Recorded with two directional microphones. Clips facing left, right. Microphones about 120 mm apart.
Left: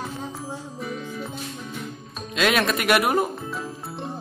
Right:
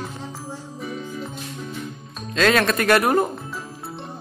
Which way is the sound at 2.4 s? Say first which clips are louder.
Right 3 dB; 15° left (ahead or behind).